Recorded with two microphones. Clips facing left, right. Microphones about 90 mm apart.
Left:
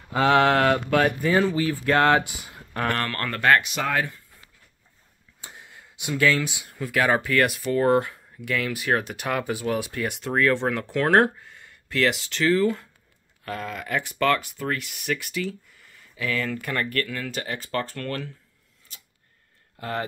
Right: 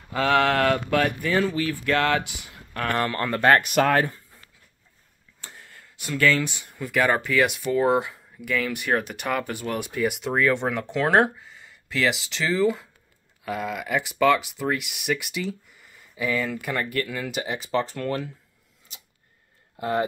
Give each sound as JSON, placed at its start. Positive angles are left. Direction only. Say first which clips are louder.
{"t": 0.1, "sound": "speech", "louder": "left 2 dB", "side_deg": 10}
{"t": 1.2, "sound": "speech", "louder": "left 2 dB", "side_deg": 20}
{"t": 1.9, "sound": "speech", "louder": "left 4 dB", "side_deg": 35}
{"t": 3.0, "sound": "speech", "louder": "right 3 dB", "side_deg": -15}
{"t": 3.6, "sound": "speech", "louder": "right 6 dB", "side_deg": -55}
{"t": 5.4, "sound": "speech", "louder": "even", "side_deg": 10}
{"t": 19.8, "sound": "speech", "louder": "right 5 dB", "side_deg": -20}